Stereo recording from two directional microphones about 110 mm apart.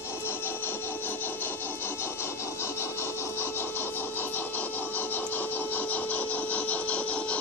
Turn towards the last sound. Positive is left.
turn(degrees=10)  # may be behind; listen again after turning